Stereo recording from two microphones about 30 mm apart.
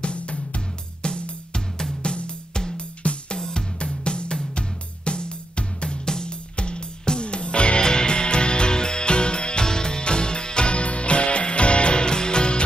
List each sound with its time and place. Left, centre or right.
0.0 s music: left
3.3 s music: left
3.8 s music: left
6.0 s music: left
6.5 s music: left